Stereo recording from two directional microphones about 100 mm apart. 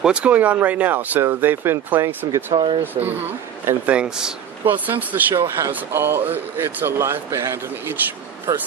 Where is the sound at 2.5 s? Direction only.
60° right (ahead or behind).